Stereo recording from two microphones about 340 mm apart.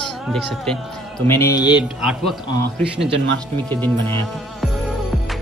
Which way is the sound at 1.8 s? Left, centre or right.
Centre.